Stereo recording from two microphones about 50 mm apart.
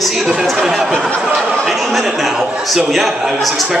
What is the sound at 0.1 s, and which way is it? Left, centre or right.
Chatter, centre.